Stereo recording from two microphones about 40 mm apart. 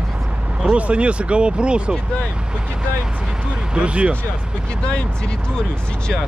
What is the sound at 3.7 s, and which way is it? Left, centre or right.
Speech, right.